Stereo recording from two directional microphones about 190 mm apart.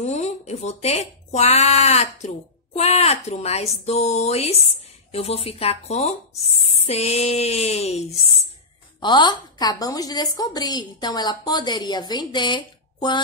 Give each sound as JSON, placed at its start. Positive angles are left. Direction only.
{"t": 0.0, "sound": "speech", "side_deg": 40}
{"t": 9.0, "sound": "a woman's voice", "side_deg": 25}